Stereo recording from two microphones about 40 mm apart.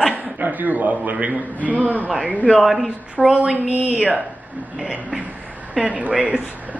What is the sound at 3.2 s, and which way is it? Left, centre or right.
Speech, right.